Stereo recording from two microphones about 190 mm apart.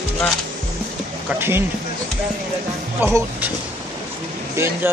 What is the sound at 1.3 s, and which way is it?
Speech, 10° right (ahead or behind).